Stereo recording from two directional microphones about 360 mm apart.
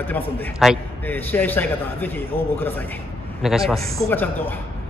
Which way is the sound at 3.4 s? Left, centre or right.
Centre.